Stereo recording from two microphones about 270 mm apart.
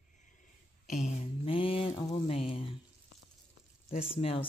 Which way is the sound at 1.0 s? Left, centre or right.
Centre.